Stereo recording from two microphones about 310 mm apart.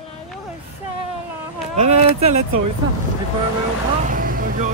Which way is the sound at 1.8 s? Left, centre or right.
Centre.